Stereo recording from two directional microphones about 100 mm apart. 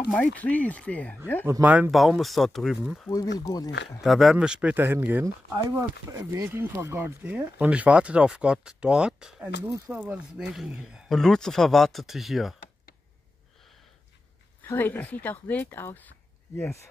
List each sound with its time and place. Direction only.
0.1 s speech: 10° left (ahead or behind)
1.6 s speech: 15° right (ahead or behind)
1.9 s speech: centre (ahead or behind)
3.1 s speech: 35° left (ahead or behind)
4.0 s speech: centre (ahead or behind); by 5.2 s 20° right (ahead or behind)
5.2 s speech: 35° right (ahead or behind)
7.2 s speech: 15° right (ahead or behind)
9.9 s speech: 20° right (ahead or behind)
10.3 s speech: 5° right (ahead or behind)
11.1 s speech: 5° left (ahead or behind)
14.6 s speech: 20° left (ahead or behind)